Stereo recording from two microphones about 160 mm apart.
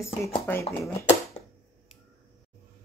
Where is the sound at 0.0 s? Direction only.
15° left (ahead or behind).